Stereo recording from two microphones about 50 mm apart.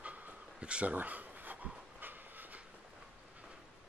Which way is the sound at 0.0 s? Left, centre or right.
Right.